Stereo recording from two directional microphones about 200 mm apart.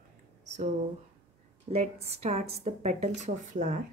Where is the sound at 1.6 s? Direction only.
30° right (ahead or behind).